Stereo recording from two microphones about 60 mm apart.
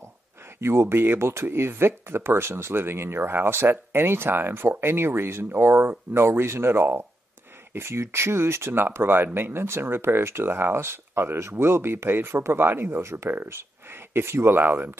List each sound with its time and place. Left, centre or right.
0.6 s speech: right